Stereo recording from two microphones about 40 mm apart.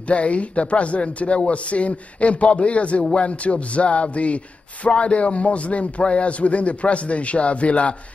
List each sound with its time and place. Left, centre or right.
0.0 s speech: left